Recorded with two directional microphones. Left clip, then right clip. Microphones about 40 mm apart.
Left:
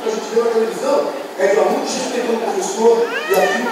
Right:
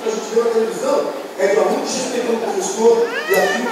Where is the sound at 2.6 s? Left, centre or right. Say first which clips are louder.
Even; centre.